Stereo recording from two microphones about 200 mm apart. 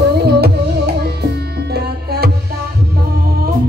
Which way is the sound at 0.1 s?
55° right (ahead or behind).